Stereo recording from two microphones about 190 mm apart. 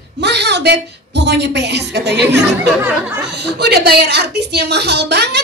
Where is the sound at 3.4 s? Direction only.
60° right (ahead or behind).